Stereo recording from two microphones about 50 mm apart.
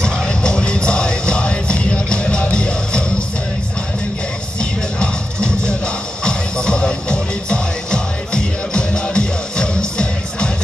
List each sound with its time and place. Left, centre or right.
0.0 s music: centre
4.6 s music: centre